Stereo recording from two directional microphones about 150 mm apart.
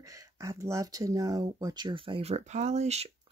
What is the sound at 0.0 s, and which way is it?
Speech, 20° right (ahead or behind).